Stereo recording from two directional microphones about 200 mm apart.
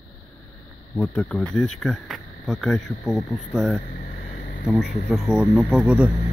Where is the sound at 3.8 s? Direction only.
40° left (ahead or behind).